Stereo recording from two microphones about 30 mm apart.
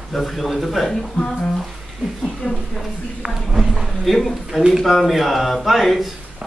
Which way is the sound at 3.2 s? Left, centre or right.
Centre.